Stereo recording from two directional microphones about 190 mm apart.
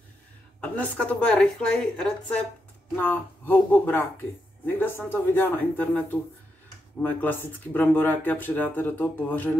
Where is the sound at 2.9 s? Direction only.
10° left (ahead or behind).